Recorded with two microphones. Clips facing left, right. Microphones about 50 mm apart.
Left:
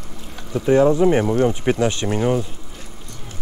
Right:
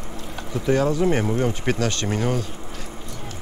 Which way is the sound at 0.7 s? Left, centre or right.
Left.